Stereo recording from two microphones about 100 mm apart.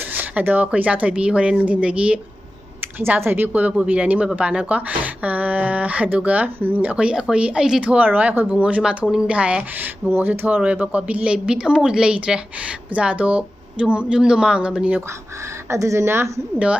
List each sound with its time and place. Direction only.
0.1 s a woman's voice: 15° right (ahead or behind)
3.0 s a woman's voice: 20° right (ahead or behind)
15.7 s speech: 30° right (ahead or behind)